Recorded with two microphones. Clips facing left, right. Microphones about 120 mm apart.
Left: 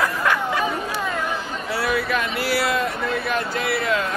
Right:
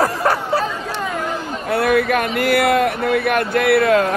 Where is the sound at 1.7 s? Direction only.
55° right (ahead or behind).